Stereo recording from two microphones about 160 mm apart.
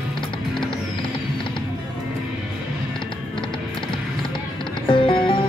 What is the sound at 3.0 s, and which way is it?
Music, 30° left (ahead or behind).